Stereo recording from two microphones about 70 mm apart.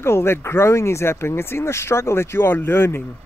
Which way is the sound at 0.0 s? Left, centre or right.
Left.